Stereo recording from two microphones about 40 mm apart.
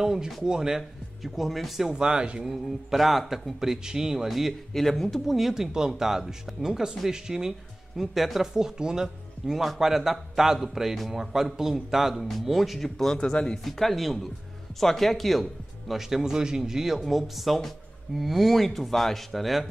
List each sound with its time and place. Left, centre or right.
0.0 s a man's voice: centre
1.9 s speech: centre
2.4 s a man's voice: centre
4.3 s speech: centre
4.7 s speech: centre
5.2 s a man's voice: centre
8.0 s speech: centre
8.5 s speech: centre
9.6 s a man's voice: centre; by 13.6 s left
13.7 s speech: centre
15.9 s a man's voice: centre